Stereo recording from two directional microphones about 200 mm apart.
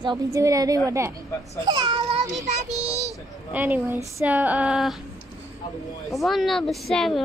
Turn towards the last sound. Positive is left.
turn(degrees=0)  # may be behind; listen again after turning